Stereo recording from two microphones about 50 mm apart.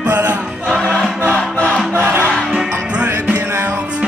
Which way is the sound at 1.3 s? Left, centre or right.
Left.